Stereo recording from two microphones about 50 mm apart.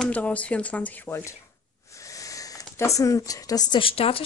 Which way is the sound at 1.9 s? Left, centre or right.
Left.